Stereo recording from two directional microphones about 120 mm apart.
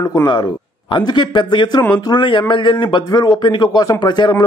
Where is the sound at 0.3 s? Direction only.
45° left (ahead or behind).